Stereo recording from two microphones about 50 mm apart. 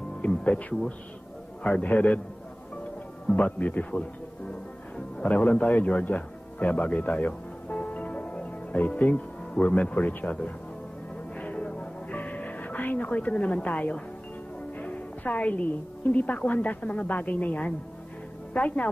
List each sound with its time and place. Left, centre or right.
0.3 s speech: left
3.3 s speech: left
5.3 s speech: left
11.3 s music: left
13.1 s speech: left
14.8 s music: left
16.1 s speech: left